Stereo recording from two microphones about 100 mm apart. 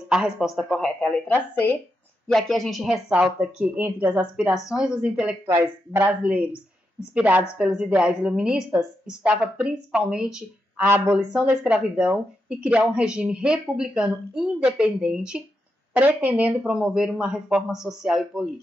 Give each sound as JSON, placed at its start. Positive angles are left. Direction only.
{"t": 0.1, "sound": "speech", "side_deg": -5}
{"t": 1.3, "sound": "speech", "side_deg": 20}
{"t": 2.2, "sound": "speech", "side_deg": 5}
{"t": 3.2, "sound": "speech", "side_deg": -10}
{"t": 5.5, "sound": "speech", "side_deg": -25}
{"t": 6.2, "sound": "speech", "side_deg": -10}